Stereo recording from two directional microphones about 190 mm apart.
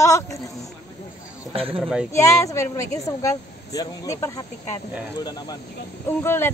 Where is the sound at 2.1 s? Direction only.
15° left (ahead or behind).